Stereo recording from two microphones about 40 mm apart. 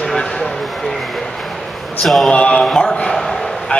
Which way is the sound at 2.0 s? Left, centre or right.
Centre.